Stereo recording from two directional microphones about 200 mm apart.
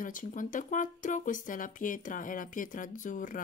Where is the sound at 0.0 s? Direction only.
40° left (ahead or behind).